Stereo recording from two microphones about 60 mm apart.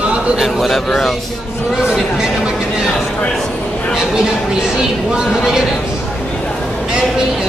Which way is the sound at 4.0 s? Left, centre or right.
Centre.